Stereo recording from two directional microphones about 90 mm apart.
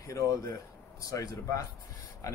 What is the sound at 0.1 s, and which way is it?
Speech, 35° left (ahead or behind).